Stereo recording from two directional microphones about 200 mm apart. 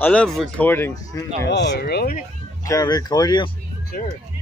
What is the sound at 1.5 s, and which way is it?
Speech, 55° left (ahead or behind).